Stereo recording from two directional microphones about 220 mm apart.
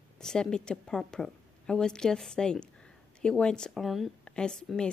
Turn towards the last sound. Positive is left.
turn(degrees=5)  # may be behind; listen again after turning